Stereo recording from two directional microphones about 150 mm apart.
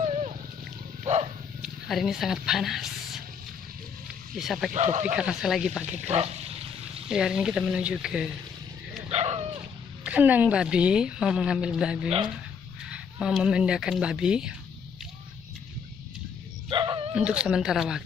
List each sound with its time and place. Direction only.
0.0 s a sound: 45° right (ahead or behind)
1.6 s speech: centre (ahead or behind)
4.4 s speech: centre (ahead or behind)
4.7 s a man's voice: 50° right (ahead or behind)
5.1 s speech: 5° right (ahead or behind)
6.0 s dog: 45° right (ahead or behind)
7.1 s speech: 5° right (ahead or behind)
9.1 s dog: 45° right (ahead or behind)
10.0 s speech: 10° right (ahead or behind)
16.6 s dog: 30° right (ahead or behind)
17.1 s speech: 5° right (ahead or behind)